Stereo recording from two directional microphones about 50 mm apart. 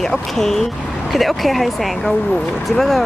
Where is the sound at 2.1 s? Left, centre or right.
Left.